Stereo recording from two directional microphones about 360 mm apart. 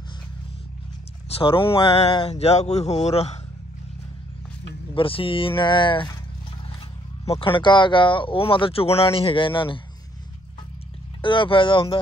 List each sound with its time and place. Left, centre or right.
1.4 s speech: centre
4.9 s speech: centre
7.2 s speech: centre
11.1 s speech: centre